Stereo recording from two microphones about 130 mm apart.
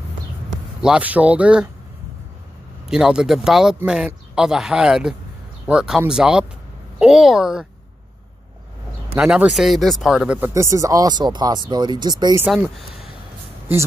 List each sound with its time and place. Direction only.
0.7 s speech: 5° right (ahead or behind)
2.9 s speech: 5° right (ahead or behind)
9.1 s speech: 10° right (ahead or behind)
10.5 s speech: 25° right (ahead or behind)
12.4 s speech: 5° right (ahead or behind)